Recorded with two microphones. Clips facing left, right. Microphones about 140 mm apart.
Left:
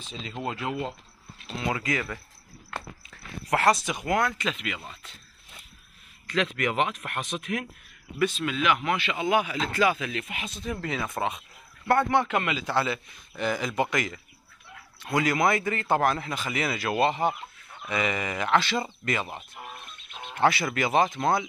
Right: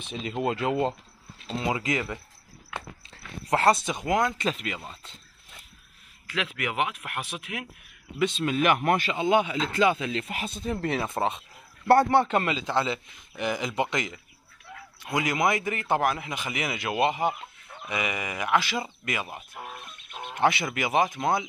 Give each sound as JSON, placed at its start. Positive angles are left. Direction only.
{"t": 0.3, "sound": "a man's voice", "side_deg": -15}
{"t": 0.6, "sound": "speech", "side_deg": -30}
{"t": 4.5, "sound": "speech", "side_deg": -35}
{"t": 6.2, "sound": "a man's voice", "side_deg": -10}
{"t": 8.5, "sound": "speech", "side_deg": -50}
{"t": 9.1, "sound": "speech", "side_deg": -25}
{"t": 12.6, "sound": "a man's voice", "side_deg": -20}
{"t": 20.3, "sound": "a man's voice", "side_deg": -20}